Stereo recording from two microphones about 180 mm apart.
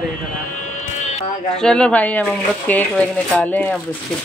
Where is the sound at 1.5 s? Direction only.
5° left (ahead or behind).